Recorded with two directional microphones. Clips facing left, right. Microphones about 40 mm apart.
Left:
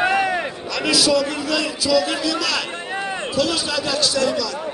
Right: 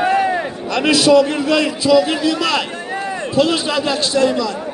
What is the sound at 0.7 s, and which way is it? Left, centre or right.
A man's voice, right.